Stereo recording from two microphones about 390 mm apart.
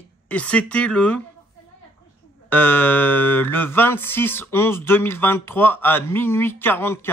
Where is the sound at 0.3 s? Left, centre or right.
Centre.